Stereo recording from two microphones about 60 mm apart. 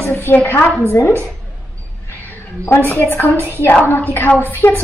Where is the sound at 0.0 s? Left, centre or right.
Left.